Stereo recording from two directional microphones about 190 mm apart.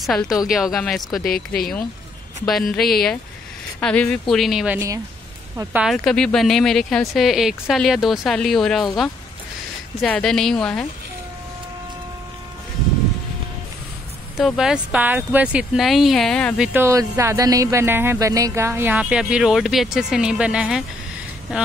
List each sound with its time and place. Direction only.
0.0 s speech: centre (ahead or behind)
1.2 s speech: 50° left (ahead or behind)
2.4 s speech: centre (ahead or behind)
5.9 s speech: 5° left (ahead or behind)
14.3 s speech: centre (ahead or behind)
16.6 s speech: 10° right (ahead or behind)